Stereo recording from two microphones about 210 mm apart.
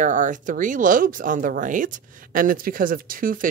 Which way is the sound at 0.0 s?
35° right (ahead or behind).